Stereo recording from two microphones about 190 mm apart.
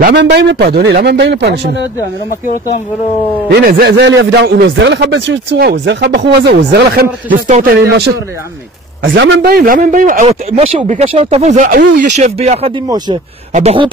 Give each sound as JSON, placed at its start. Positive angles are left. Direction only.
{"t": 0.0, "sound": "speech", "side_deg": -60}
{"t": 3.5, "sound": "speech", "side_deg": -55}
{"t": 7.4, "sound": "a man's voice", "side_deg": -45}
{"t": 9.0, "sound": "a man's voice", "side_deg": -70}
{"t": 10.2, "sound": "speech", "side_deg": -30}